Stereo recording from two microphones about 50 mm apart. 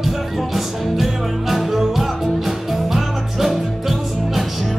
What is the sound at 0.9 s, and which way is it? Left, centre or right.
Music, centre.